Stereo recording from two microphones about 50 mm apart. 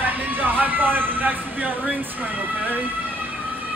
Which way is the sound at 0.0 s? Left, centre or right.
Right.